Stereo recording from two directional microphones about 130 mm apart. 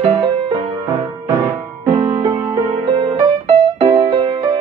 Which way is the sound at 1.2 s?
25° right (ahead or behind).